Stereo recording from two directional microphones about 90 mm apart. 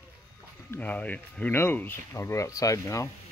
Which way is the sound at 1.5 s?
25° left (ahead or behind).